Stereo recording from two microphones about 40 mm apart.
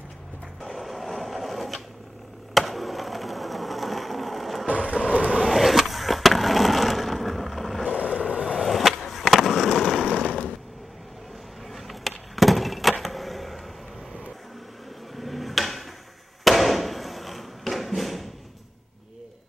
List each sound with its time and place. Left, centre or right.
0.6 s sewing machine: centre
2.5 s ratchet: centre
4.6 s vehicle: right
5.5 s skateboard: centre
8.0 s vehicle: right
8.5 s skateboard: centre
10.0 s a sound: left
11.7 s a sound: centre
15.1 s a sound: centre